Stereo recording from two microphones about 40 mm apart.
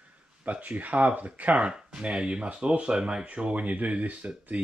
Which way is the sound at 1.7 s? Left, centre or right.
Right.